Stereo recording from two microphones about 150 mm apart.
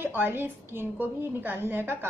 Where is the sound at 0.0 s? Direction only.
15° right (ahead or behind).